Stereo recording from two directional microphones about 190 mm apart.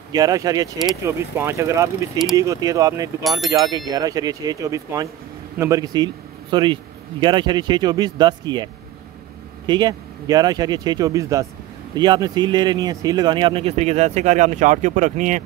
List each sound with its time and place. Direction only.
0.1 s speech: 20° right (ahead or behind)
9.7 s speech: 20° right (ahead or behind); by 15.4 s 40° right (ahead or behind)